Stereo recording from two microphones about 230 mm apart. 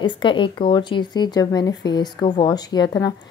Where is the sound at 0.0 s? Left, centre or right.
Left.